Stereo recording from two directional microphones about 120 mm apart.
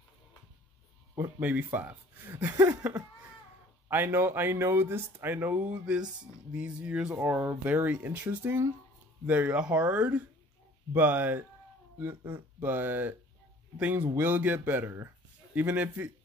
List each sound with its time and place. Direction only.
1.4 s speech: 10° right (ahead or behind)
3.9 s speech: 15° right (ahead or behind)